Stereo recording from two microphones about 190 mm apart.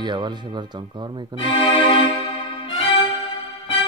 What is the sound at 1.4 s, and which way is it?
Speech, 25° left (ahead or behind).